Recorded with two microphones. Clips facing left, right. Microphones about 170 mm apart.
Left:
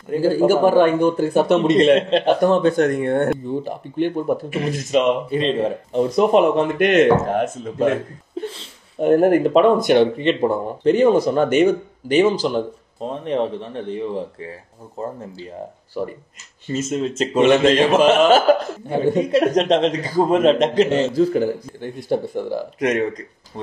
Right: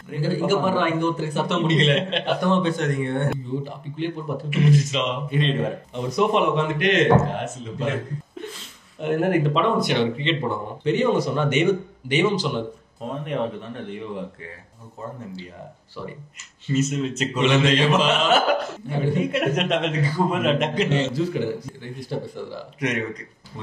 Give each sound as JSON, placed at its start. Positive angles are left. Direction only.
{"t": 0.1, "sound": "speech", "side_deg": 40}
{"t": 9.0, "sound": "speech", "side_deg": 40}
{"t": 16.7, "sound": "speech", "side_deg": 40}
{"t": 18.5, "sound": "speech", "side_deg": 40}